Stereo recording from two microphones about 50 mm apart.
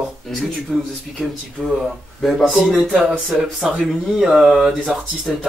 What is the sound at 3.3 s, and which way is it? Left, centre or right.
A man's voice, centre.